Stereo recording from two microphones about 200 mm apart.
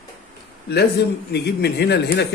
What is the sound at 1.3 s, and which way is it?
Speech, 55° left (ahead or behind).